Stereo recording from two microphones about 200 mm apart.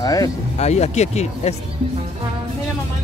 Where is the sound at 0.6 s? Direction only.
35° left (ahead or behind).